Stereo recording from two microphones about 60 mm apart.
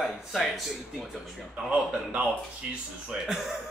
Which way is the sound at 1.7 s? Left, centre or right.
Right.